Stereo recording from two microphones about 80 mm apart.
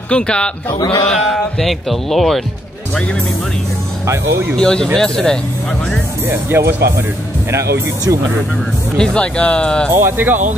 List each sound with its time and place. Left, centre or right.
0.1 s speech: centre
4.0 s speech: right
4.6 s speech: centre
6.2 s speech: right
8.9 s speech: centre
9.8 s speech: right